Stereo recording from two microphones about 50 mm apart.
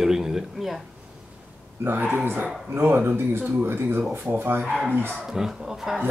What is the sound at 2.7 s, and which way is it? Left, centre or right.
Speech, right.